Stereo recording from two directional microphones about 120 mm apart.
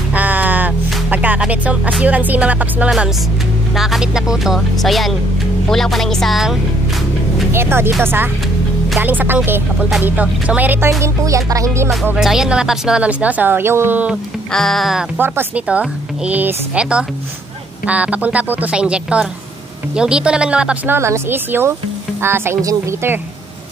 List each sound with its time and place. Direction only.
0.1 s music: 15° right (ahead or behind)
3.7 s speech: 5° right (ahead or behind)
7.5 s music: 20° right (ahead or behind)
9.0 s speech: 15° right (ahead or behind)
10.9 s music: 25° right (ahead or behind)
12.2 s speech: 5° right (ahead or behind)
14.5 s speech: 5° left (ahead or behind)
15.1 s speech: 15° right (ahead or behind)
22.2 s music: 20° right (ahead or behind)